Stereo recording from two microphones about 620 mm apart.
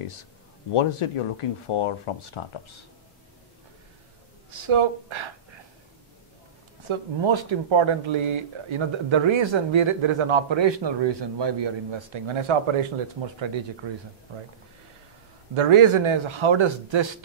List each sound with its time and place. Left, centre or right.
0.0 s speech: left
4.5 s speech: right
6.9 s speech: right
13.8 s speech: right
15.5 s speech: right